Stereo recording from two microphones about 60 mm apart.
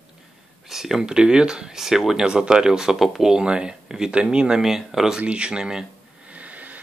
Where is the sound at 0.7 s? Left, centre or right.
Centre.